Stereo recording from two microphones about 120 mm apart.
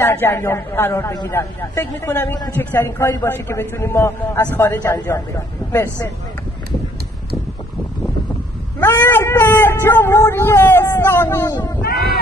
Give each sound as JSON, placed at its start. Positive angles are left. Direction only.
{"t": 0.0, "sound": "a man's voice", "side_deg": 20}
{"t": 8.7, "sound": "a sound", "side_deg": 15}
{"t": 11.4, "sound": "a man's voice", "side_deg": 30}